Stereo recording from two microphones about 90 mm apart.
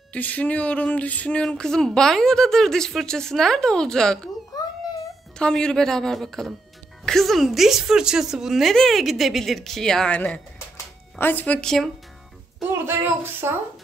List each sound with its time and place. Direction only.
0.1 s a woman's voice: 15° left (ahead or behind)
5.4 s a woman's voice: 10° left (ahead or behind)
12.8 s speech: 25° right (ahead or behind)